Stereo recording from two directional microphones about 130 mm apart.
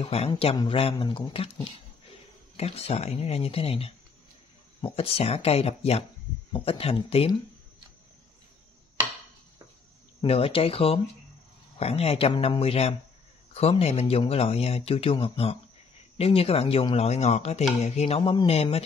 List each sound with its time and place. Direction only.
0.0 s speech: 50° left (ahead or behind)
10.2 s speech: 45° left (ahead or behind)
16.9 s chopping: 55° left (ahead or behind)
18.3 s speech: 50° left (ahead or behind)